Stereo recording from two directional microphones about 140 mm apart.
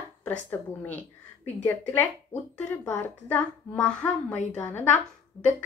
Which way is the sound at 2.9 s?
10° left (ahead or behind).